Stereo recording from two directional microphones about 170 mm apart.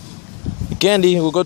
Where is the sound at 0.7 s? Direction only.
35° left (ahead or behind).